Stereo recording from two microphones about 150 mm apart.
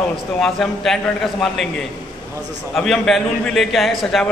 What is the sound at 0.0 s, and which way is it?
A man's voice, centre (ahead or behind).